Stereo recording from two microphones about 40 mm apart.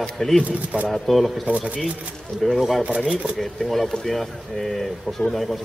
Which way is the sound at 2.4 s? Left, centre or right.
Centre.